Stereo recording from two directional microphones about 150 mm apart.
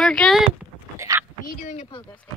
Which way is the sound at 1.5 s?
50° left (ahead or behind).